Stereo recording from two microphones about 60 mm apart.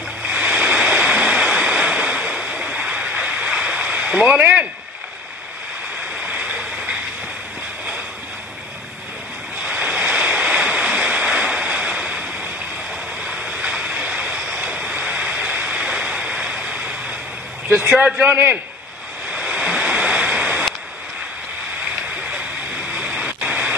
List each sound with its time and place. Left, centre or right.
0.3 s waterfall: centre
6.2 s stream: right
9.7 s waves: right
15.9 s a sound: right
17.6 s vehicle: right
17.9 s a man's voice: right
19.3 s waves: centre
23.0 s a sound: centre